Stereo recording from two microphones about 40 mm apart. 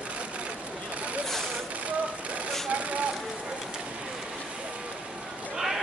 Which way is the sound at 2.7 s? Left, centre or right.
Right.